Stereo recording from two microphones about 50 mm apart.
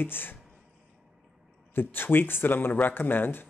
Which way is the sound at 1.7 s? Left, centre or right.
Left.